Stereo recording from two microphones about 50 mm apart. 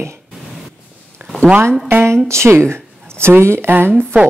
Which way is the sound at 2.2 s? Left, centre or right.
Right.